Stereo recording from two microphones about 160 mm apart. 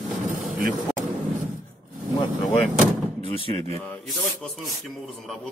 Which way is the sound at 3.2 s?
35° left (ahead or behind).